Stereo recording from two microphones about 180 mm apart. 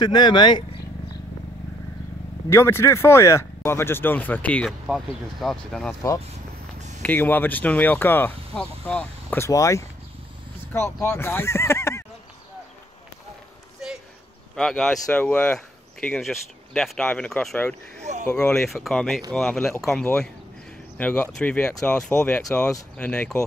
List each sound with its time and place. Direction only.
0.0 s speech: 25° left (ahead or behind)
2.5 s speech: 15° left (ahead or behind)
7.0 s speech: 10° left (ahead or behind)
14.5 s speech: centre (ahead or behind)